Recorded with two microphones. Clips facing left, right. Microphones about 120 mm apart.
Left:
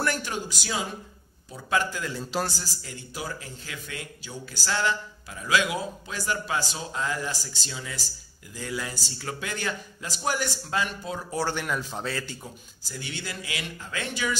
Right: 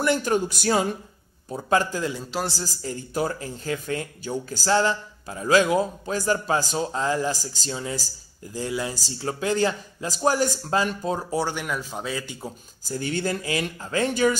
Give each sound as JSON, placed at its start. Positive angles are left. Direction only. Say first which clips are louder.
{"t": 0.2, "sound": "speech", "louder": "right 10 dB", "side_deg": -50}
{"t": 1.5, "sound": "speech", "louder": "right 5 dB", "side_deg": -40}
{"t": 8.5, "sound": "speech", "louder": "right 5 dB", "side_deg": -25}
{"t": 11.3, "sound": "speech", "louder": "right 2 dB", "side_deg": -10}
{"t": 12.4, "sound": "speech", "louder": "right 9 dB", "side_deg": -40}